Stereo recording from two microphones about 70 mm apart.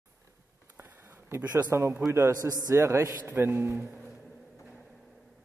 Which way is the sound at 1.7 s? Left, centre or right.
Right.